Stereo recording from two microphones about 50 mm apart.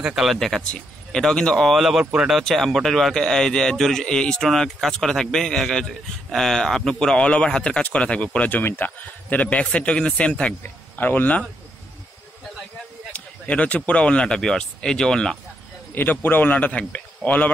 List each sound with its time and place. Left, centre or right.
0.1 s speech: centre
0.4 s a man's voice: centre
1.7 s speech: centre
2.4 s a man's voice: centre; by 10.5 s left
10.6 s speech: left
13.1 s a man's voice: left; by 15.3 s centre
15.9 s speech: left
16.5 s speech: left